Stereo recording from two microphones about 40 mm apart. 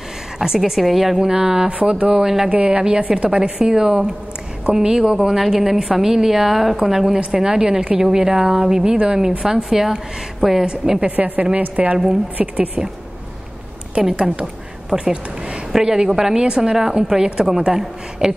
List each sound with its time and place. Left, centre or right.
0.4 s a woman's voice: centre
1.3 s a woman's voice: right
1.7 s a woman's voice: right
2.0 s a woman's voice: centre
2.5 s a woman's voice: right
8.9 s a woman's voice: right
10.6 s a woman's voice: right
14.0 s a woman's voice: right